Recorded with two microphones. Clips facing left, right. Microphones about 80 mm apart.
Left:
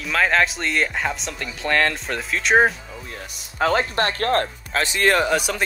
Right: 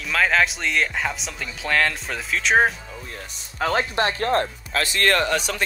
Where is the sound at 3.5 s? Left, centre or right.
Left.